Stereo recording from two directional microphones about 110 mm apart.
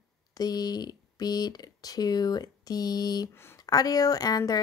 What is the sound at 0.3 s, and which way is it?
Speech, 35° left (ahead or behind).